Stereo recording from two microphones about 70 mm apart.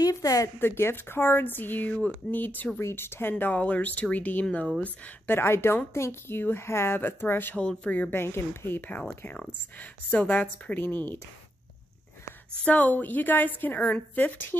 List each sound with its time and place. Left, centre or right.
0.0 s a woman's voice: left
0.6 s a woman's voice: left
2.8 s a woman's voice: left
7.5 s a woman's voice: centre
12.6 s a woman's voice: left